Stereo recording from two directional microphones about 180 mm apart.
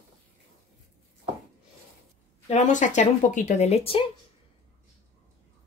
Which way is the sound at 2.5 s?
40° left (ahead or behind).